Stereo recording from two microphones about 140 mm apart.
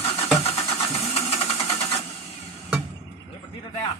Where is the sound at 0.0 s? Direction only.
40° left (ahead or behind).